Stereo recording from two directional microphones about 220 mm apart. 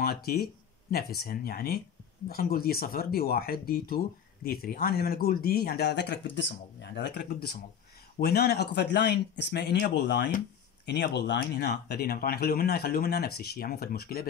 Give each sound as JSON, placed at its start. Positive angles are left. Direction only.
{"t": 0.0, "sound": "speech", "side_deg": 45}